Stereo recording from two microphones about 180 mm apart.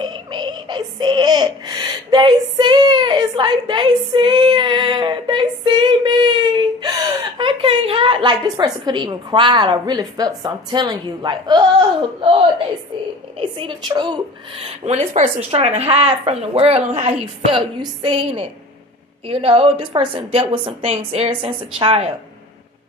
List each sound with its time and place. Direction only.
0.0 s synthetic singing: 25° right (ahead or behind)
13.4 s a woman's voice: 30° right (ahead or behind)
14.6 s speech: 35° right (ahead or behind)